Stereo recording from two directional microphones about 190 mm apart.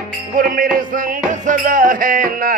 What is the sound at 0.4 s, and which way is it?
Speech, 50° right (ahead or behind).